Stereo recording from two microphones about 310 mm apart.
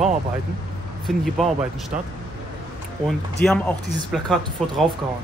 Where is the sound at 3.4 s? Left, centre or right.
Centre.